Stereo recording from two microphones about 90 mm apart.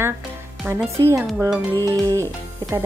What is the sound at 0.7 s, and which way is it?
Speech, 20° right (ahead or behind).